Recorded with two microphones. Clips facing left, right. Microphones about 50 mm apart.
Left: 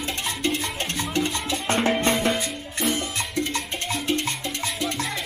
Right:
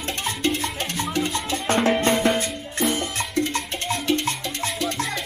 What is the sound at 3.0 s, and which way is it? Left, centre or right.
Music, right.